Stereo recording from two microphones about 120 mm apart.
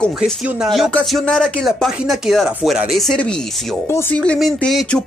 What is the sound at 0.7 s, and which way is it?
Speech, centre (ahead or behind).